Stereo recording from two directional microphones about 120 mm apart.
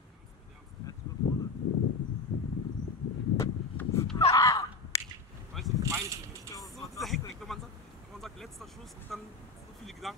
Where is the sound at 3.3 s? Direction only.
25° left (ahead or behind).